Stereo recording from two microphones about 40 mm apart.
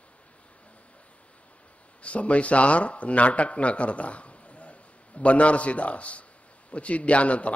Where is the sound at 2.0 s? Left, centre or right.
Left.